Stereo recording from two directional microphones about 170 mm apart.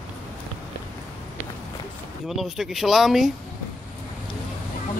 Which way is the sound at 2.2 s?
Centre (ahead or behind).